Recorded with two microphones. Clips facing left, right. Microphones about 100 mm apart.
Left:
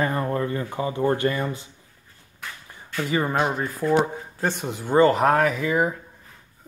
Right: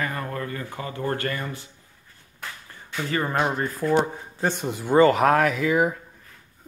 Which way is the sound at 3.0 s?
10° left (ahead or behind).